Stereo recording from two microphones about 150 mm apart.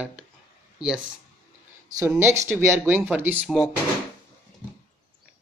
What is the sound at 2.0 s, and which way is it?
Speech, 15° right (ahead or behind).